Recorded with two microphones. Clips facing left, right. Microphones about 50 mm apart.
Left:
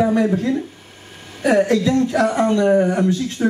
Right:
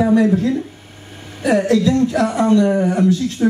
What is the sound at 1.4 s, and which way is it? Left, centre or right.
A woman's voice, left.